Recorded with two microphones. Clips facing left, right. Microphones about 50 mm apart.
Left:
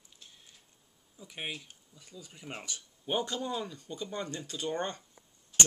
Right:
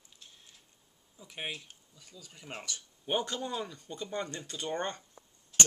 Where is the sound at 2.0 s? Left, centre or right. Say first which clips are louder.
Left 4 dB; centre.